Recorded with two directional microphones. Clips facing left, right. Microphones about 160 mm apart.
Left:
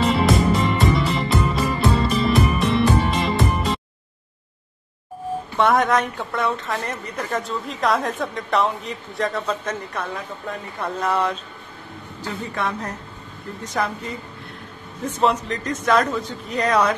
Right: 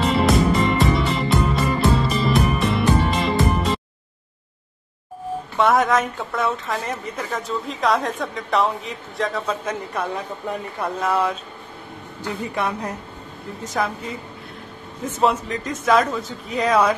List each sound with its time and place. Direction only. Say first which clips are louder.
0.0 s music: even; centre (ahead or behind)
5.6 s a woman's voice: even; centre (ahead or behind)
12.2 s a woman's voice: right 2 dB; 15° right (ahead or behind)
13.7 s a woman's voice: even; centre (ahead or behind)
15.1 s a woman's voice: even; centre (ahead or behind)